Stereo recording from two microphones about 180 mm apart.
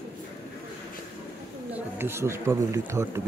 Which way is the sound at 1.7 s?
10° right (ahead or behind).